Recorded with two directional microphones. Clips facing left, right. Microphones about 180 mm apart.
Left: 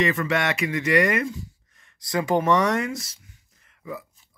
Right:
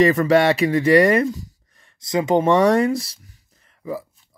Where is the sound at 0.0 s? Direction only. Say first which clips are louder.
Right 9 dB; 35° right (ahead or behind).